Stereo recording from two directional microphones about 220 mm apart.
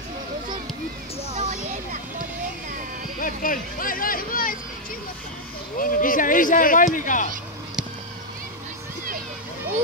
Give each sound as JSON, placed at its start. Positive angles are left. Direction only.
{"t": 1.3, "sound": "a sound", "side_deg": -30}
{"t": 3.2, "sound": "speech", "side_deg": 40}
{"t": 5.8, "sound": "speech", "side_deg": 40}